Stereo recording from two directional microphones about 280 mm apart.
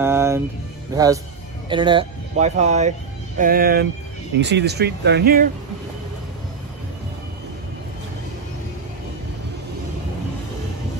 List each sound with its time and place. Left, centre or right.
0.0 s music: centre
0.9 s speech: centre; by 5.5 s right